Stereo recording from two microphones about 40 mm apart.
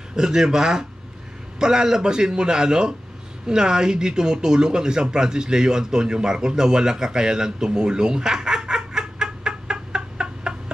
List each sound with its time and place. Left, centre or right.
0.1 s speech: centre